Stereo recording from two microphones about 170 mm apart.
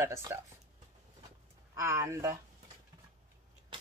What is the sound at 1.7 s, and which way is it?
Speech, 15° right (ahead or behind).